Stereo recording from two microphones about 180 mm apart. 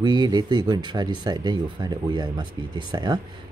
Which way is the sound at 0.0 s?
25° right (ahead or behind).